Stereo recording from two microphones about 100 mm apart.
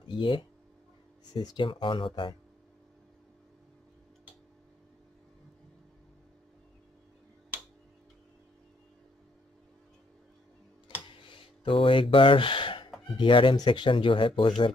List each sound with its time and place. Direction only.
0.1 s speech: 55° left (ahead or behind)
1.3 s speech: 40° left (ahead or behind)
1.6 s speech: 55° left (ahead or behind)
11.1 s a sound: 60° left (ahead or behind)
13.2 s speech: 55° left (ahead or behind)